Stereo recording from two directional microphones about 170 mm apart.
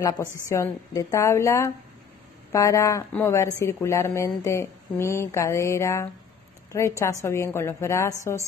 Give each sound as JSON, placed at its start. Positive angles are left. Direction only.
{"t": 0.0, "sound": "speech", "side_deg": 15}